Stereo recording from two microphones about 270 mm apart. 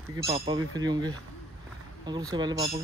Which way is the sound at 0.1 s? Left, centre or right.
Centre.